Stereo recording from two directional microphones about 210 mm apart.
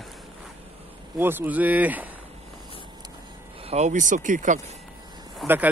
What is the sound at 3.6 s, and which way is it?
Speech, 30° right (ahead or behind).